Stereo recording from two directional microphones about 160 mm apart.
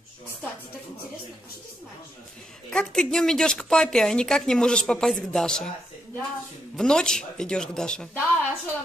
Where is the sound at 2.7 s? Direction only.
5° left (ahead or behind).